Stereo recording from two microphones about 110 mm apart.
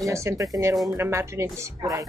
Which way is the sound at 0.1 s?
25° right (ahead or behind).